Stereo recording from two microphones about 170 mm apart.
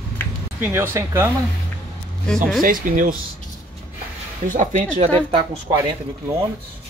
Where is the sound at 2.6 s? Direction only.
55° right (ahead or behind).